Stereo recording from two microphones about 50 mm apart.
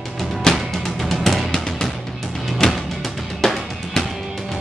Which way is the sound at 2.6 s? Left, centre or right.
Centre.